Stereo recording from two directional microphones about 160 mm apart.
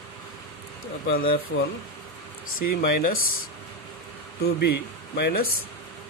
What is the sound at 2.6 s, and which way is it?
Speech, 70° left (ahead or behind).